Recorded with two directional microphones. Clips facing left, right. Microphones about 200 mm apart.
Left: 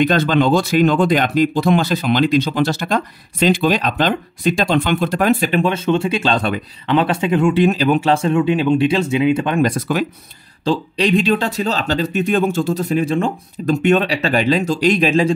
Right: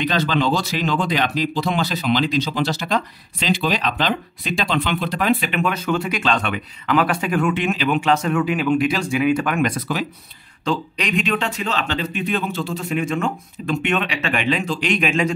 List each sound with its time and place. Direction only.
0.0 s speech: 50° left (ahead or behind)
5.6 s speech: 25° left (ahead or behind)
9.7 s speech: 50° left (ahead or behind)
10.6 s speech: 30° left (ahead or behind)